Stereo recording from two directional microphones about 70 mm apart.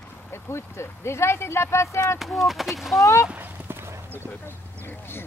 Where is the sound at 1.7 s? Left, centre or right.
Left.